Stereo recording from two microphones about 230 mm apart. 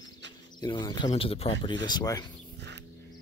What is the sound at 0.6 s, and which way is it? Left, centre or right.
Speech, centre.